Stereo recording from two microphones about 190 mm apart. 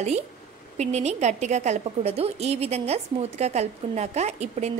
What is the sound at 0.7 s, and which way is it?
A woman's voice, 35° right (ahead or behind).